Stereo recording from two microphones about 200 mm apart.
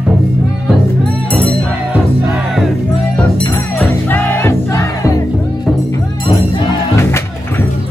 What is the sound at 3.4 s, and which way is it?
Music, 10° left (ahead or behind).